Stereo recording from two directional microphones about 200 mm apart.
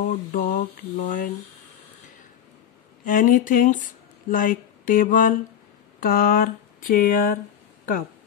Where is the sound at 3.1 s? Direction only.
45° left (ahead or behind).